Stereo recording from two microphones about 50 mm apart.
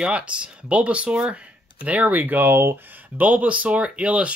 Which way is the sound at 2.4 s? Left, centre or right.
Right.